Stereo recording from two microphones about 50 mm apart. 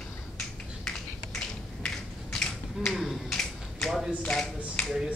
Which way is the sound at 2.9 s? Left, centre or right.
Centre.